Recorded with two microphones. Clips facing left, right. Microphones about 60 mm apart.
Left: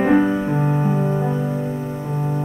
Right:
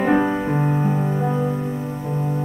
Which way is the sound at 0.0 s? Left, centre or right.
Centre.